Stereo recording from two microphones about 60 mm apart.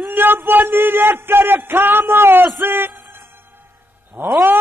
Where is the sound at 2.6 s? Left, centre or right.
Right.